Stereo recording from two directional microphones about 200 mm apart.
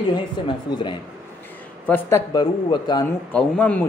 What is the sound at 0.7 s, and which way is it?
A man's voice, 25° left (ahead or behind).